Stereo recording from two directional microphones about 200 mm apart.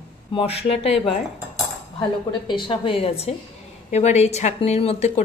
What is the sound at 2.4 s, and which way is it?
A woman's voice, 25° left (ahead or behind).